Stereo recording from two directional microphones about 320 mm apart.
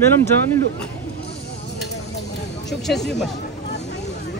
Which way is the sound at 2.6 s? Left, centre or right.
Centre.